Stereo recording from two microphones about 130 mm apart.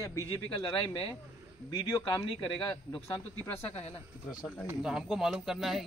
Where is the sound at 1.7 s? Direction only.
35° left (ahead or behind).